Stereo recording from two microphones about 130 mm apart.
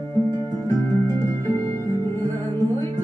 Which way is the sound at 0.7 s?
25° left (ahead or behind).